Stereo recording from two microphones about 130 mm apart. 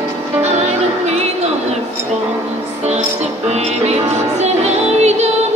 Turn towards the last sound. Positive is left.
turn(degrees=-60)  # may be behind; listen again after turning